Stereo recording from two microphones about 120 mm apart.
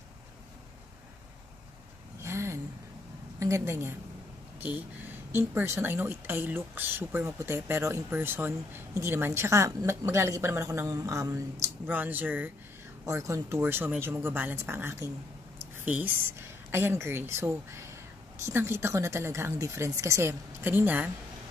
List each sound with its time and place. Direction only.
2.1 s a sound: 20° right (ahead or behind)
3.3 s speech: 25° right (ahead or behind)
11.9 s speech: 15° right (ahead or behind)
13.0 s speech: 25° right (ahead or behind)